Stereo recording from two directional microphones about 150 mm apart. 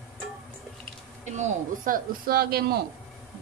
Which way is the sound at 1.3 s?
65° right (ahead or behind).